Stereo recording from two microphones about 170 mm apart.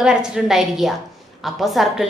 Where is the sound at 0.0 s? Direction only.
5° right (ahead or behind).